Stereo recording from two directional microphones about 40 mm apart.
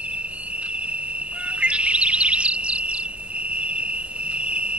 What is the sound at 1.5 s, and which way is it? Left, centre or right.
Music, right.